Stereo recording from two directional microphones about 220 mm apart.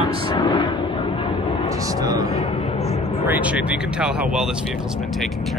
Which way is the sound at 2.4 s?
25° left (ahead or behind).